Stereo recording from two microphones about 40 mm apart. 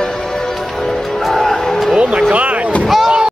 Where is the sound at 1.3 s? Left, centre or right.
Centre.